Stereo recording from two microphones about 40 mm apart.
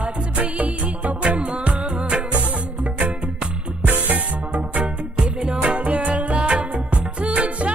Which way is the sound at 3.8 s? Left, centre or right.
Right.